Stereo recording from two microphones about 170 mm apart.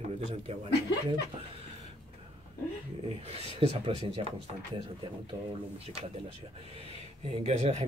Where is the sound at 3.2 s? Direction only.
35° right (ahead or behind).